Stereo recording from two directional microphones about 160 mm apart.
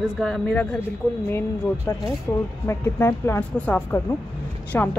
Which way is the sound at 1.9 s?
20° left (ahead or behind).